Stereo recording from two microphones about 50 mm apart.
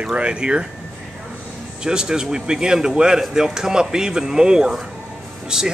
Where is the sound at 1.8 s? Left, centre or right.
Centre.